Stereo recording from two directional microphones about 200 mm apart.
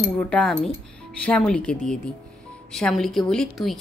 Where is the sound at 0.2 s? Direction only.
5° left (ahead or behind).